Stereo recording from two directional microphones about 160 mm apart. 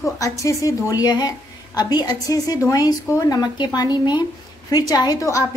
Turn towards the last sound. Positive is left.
turn(degrees=20)  # may be behind; listen again after turning